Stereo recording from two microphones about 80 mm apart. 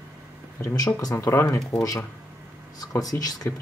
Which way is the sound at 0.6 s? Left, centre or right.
Left.